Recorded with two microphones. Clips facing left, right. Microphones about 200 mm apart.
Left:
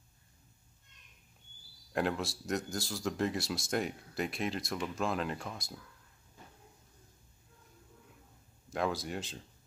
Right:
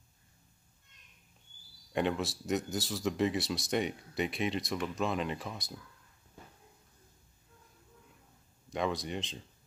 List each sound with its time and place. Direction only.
1.9 s speech: centre (ahead or behind)
8.6 s speech: centre (ahead or behind)